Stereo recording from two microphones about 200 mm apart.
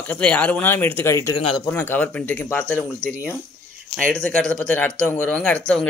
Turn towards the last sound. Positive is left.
turn(degrees=10)  # may be behind; listen again after turning